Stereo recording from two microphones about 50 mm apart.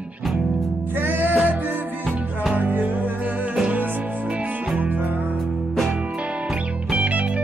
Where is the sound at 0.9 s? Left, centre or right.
Right.